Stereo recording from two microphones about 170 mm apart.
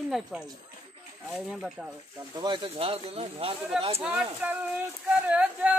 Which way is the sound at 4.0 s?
5° right (ahead or behind).